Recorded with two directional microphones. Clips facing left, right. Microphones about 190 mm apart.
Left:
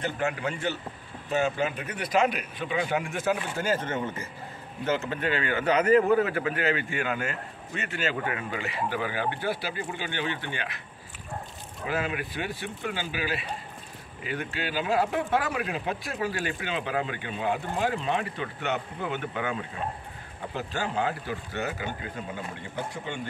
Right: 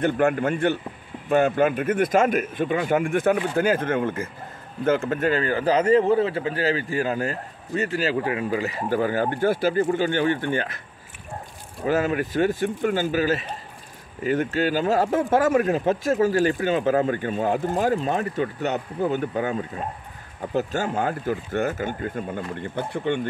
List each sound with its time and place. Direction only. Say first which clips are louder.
0.0 s a man's voice: right 9 dB; 50° right (ahead or behind)
11.8 s speech: right 8 dB; 45° right (ahead or behind); by 23.2 s 60° right (ahead or behind)